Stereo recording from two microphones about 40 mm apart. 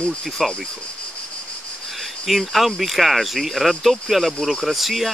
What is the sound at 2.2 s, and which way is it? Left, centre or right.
Speech, centre.